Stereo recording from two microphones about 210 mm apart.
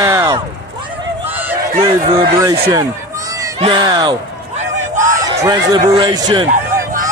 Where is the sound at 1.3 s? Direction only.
10° right (ahead or behind).